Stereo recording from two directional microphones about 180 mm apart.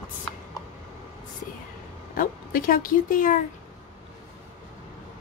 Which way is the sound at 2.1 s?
50° left (ahead or behind).